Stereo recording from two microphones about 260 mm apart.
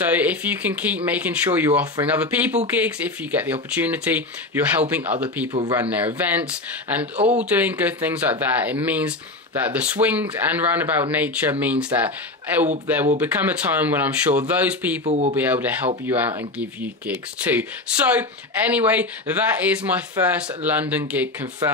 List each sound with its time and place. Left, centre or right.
0.0 s speech: centre
7.2 s speech: right
7.4 s speech: centre
15.0 s speech: right
15.3 s speech: centre
17.1 s speech: centre